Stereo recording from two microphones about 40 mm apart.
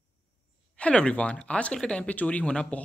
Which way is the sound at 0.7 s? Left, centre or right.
Left.